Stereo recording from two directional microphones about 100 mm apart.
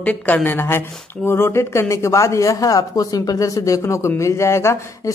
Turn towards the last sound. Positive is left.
turn(degrees=30)  # may be behind; listen again after turning